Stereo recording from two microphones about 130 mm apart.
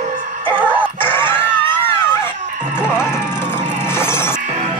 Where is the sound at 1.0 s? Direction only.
15° left (ahead or behind).